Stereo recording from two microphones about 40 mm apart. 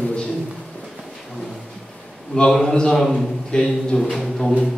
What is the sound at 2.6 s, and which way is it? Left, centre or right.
Speech, centre.